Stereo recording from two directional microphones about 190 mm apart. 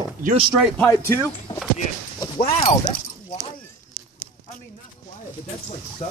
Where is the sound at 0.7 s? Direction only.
10° left (ahead or behind).